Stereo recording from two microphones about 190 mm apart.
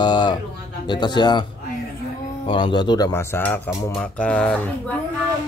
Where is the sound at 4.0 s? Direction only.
5° left (ahead or behind).